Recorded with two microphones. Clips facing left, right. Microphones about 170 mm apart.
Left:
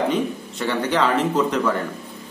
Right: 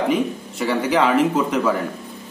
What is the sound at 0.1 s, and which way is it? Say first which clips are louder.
A man's voice: right 2 dB; 5° right (ahead or behind).